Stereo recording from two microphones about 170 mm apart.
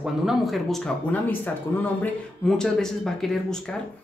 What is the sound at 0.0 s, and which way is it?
Speech, centre (ahead or behind).